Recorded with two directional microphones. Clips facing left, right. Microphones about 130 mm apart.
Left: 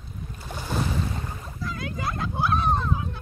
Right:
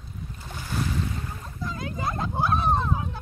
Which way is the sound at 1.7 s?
30° right (ahead or behind).